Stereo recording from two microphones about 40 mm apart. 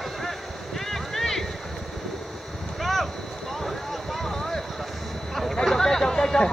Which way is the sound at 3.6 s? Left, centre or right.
Centre.